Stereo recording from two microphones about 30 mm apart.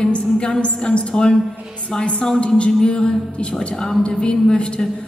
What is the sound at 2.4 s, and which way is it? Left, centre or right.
Speech, left.